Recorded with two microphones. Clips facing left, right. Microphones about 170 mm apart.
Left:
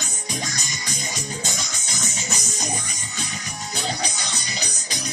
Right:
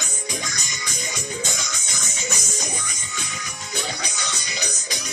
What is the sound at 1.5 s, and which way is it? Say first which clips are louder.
Music: even; 55° right (ahead or behind).